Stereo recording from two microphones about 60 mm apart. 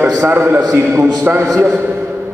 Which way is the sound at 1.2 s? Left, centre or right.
Right.